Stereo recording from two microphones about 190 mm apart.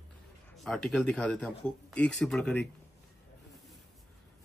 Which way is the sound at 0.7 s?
5° left (ahead or behind).